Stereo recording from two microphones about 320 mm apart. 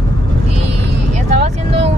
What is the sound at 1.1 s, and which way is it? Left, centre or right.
Vehicle, right.